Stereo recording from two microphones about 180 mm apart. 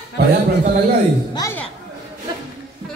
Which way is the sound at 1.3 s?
20° left (ahead or behind).